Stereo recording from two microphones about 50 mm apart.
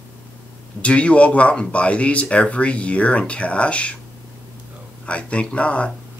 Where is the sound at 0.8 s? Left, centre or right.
Left.